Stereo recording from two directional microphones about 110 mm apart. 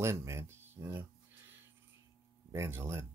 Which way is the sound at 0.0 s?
25° right (ahead or behind).